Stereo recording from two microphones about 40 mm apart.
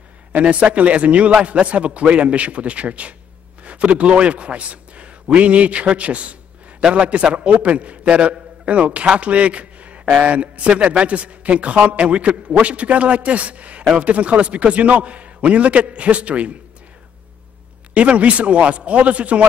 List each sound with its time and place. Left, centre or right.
0.3 s a man's voice: right
17.9 s a man's voice: right